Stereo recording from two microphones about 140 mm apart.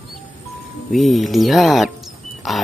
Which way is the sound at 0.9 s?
Centre (ahead or behind).